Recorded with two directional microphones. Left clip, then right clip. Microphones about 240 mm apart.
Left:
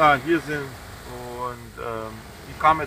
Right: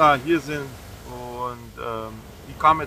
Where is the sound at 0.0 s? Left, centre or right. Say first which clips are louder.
Right 1 dB; centre.